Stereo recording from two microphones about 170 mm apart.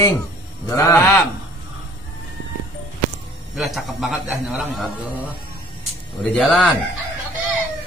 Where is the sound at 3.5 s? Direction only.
Centre (ahead or behind).